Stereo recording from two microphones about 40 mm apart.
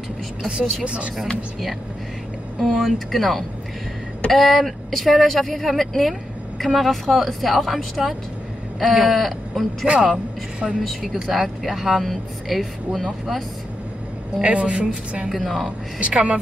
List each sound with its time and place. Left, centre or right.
0.5 s a woman's voice: right
2.6 s speech: centre
9.8 s a woman's voice: right
10.8 s speech: centre
14.4 s a woman's voice: right
15.2 s speech: centre
16.0 s a woman's voice: right